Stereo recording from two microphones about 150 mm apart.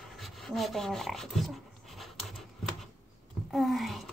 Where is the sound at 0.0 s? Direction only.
Centre (ahead or behind).